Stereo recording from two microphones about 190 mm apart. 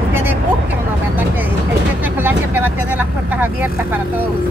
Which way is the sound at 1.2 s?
10° right (ahead or behind).